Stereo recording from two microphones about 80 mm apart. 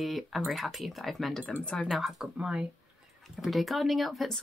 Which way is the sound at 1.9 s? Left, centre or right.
Centre.